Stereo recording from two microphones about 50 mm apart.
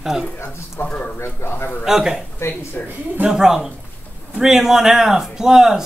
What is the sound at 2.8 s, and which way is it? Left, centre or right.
Speech, left.